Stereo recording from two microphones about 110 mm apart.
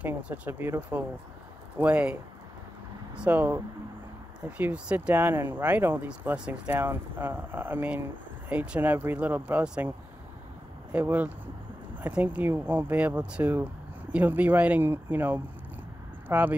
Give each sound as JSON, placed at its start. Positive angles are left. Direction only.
{"t": 0.0, "sound": "speech", "side_deg": -15}
{"t": 3.2, "sound": "speech", "side_deg": -15}